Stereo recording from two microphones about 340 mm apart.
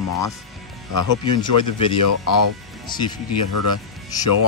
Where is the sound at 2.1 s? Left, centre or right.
Left.